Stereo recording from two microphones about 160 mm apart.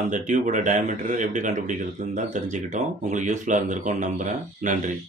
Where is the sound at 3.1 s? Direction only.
50° right (ahead or behind).